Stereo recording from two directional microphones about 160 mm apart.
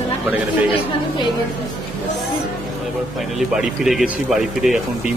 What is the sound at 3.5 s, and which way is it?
Speech, centre (ahead or behind).